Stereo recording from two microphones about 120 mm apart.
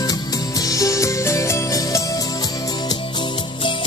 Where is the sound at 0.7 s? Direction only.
25° left (ahead or behind).